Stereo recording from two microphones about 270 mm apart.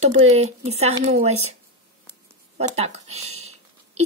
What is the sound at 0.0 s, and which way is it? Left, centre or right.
Speech, right.